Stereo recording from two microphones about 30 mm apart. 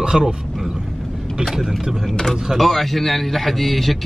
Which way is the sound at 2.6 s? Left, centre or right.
Centre.